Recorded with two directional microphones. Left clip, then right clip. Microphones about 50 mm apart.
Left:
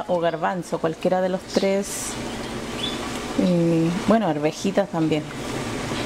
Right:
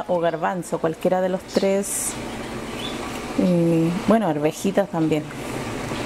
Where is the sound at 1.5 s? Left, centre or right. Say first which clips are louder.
Right 1 dB; right.